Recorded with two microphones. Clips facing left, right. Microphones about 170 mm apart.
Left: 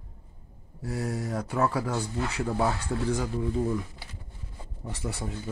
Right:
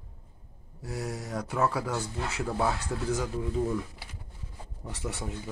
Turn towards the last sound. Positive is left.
turn(degrees=0)  # may be behind; listen again after turning